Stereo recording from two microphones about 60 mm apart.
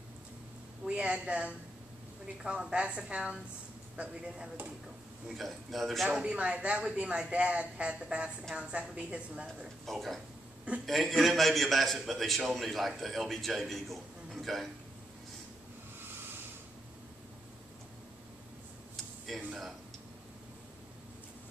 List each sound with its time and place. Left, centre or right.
0.8 s a woman's voice: centre
5.3 s a man's voice: centre
6.2 s a woman's voice: centre
9.8 s a man's voice: centre
19.3 s speech: centre